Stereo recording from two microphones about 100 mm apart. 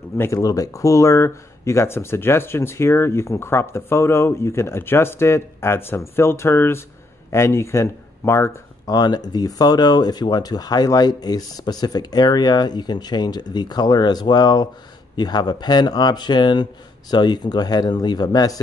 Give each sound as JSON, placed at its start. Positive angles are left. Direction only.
{"t": 0.2, "sound": "speech", "side_deg": 35}
{"t": 8.8, "sound": "speech", "side_deg": 40}